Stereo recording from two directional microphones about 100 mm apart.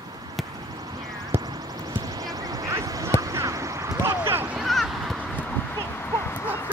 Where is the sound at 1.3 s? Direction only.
25° right (ahead or behind).